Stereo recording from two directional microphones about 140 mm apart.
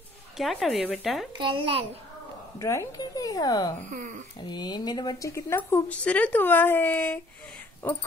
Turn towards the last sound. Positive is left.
turn(degrees=10)  # may be behind; listen again after turning